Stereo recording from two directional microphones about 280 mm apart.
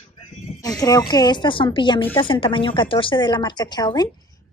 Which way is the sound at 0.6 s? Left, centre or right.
Centre.